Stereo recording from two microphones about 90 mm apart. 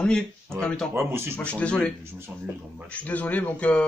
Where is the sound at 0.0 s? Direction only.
10° left (ahead or behind).